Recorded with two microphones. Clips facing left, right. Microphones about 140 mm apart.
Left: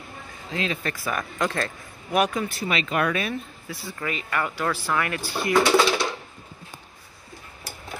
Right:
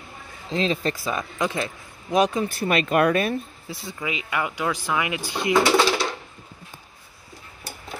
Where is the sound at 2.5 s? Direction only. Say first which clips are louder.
Right 5 dB; 50° right (ahead or behind).